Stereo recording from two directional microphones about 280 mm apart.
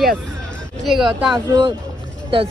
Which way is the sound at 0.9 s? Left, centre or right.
Centre.